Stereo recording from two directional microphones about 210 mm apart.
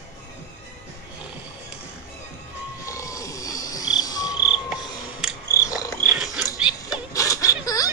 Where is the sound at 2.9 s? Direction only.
15° left (ahead or behind).